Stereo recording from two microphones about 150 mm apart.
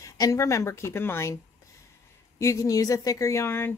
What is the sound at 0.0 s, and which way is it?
Speech, 20° left (ahead or behind).